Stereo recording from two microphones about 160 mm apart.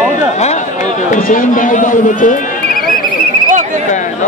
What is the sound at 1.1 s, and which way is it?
A man's voice, 55° left (ahead or behind).